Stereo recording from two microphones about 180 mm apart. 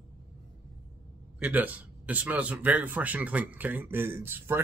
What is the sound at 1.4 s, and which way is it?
Speech, 10° right (ahead or behind).